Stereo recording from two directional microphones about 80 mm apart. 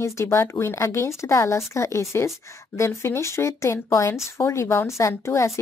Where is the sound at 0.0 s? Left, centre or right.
Left.